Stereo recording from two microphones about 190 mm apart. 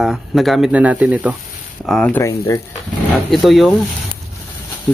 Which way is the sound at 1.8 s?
5° left (ahead or behind).